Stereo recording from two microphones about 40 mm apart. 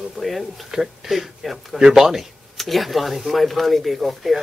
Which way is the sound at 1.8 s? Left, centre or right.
Centre.